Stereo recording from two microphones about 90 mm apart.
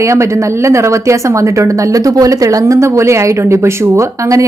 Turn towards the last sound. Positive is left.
turn(degrees=-35)  # may be behind; listen again after turning